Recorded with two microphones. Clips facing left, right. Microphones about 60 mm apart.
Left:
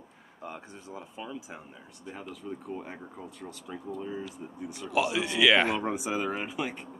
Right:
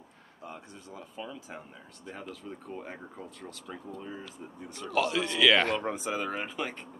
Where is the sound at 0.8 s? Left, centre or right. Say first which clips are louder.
Even; centre.